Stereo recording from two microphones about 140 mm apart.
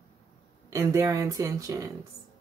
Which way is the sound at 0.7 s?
25° right (ahead or behind).